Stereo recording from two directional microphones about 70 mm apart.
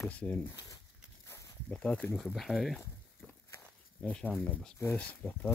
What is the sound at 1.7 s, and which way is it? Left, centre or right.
Speech, centre.